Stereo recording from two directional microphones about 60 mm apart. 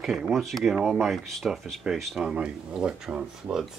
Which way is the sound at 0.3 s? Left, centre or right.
Centre.